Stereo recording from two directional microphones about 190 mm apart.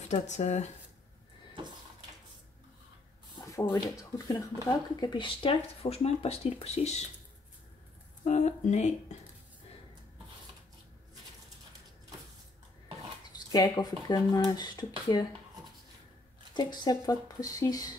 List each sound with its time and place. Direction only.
0.1 s speech: 35° left (ahead or behind)
3.3 s speech: 20° left (ahead or behind); by 7.1 s 35° left (ahead or behind)
8.3 s speech: 35° left (ahead or behind)
13.5 s speech: 20° left (ahead or behind)
16.5 s speech: 20° left (ahead or behind)